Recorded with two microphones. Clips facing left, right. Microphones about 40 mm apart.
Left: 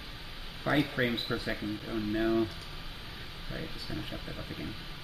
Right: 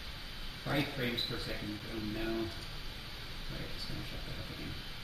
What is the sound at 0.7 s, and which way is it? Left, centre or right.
Speech, left.